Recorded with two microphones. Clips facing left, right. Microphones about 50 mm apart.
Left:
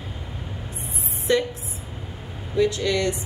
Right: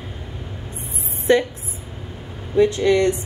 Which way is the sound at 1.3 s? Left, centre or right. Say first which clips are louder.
Right 5 dB; right.